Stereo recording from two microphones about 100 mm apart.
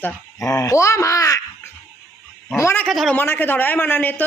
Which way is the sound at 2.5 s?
30° left (ahead or behind).